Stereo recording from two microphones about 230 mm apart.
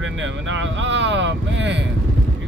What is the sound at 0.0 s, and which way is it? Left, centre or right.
Speech, right.